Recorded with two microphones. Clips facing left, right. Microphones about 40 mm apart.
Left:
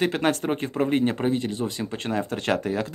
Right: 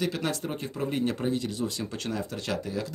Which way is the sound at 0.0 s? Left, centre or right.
Left.